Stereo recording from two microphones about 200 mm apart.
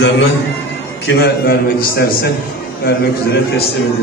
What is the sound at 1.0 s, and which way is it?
A man's voice, 55° left (ahead or behind).